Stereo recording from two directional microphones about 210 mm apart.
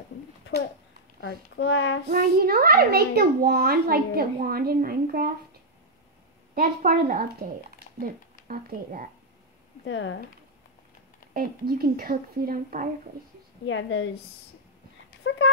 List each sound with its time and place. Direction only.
1.2 s a child's voice: 60° left (ahead or behind)
2.0 s a child's voice: 45° right (ahead or behind)
6.5 s a woman's voice: 40° right (ahead or behind)
8.5 s a woman's voice: 40° right (ahead or behind)
9.8 s a child's voice: 65° left (ahead or behind)
11.3 s a child's voice: 45° right (ahead or behind)
13.7 s a child's voice: 65° left (ahead or behind)
15.2 s a child's voice: 60° left (ahead or behind)